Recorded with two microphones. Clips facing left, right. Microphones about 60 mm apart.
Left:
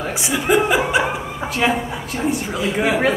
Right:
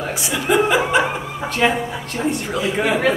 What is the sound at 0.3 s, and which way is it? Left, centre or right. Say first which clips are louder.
Speech: even; centre.